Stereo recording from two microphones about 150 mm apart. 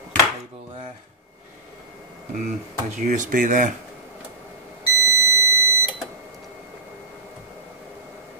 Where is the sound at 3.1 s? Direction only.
60° right (ahead or behind).